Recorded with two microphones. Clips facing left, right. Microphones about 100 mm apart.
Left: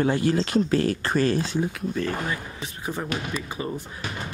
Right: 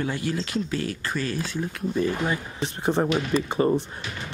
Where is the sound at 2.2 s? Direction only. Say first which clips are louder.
Right 4 dB; 25° right (ahead or behind).